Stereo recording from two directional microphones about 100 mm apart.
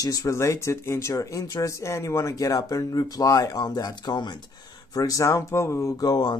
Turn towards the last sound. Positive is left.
turn(degrees=45)  # may be behind; listen again after turning